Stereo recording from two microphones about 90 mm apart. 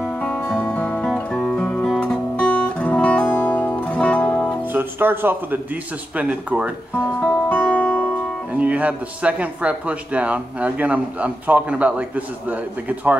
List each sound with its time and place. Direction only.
0.0 s music: 15° left (ahead or behind)
2.3 s guitar: 15° left (ahead or behind)
3.3 s music: 20° left (ahead or behind)
4.7 s speech: 25° right (ahead or behind)
7.2 s music: 15° left (ahead or behind)
8.5 s speech: 15° right (ahead or behind)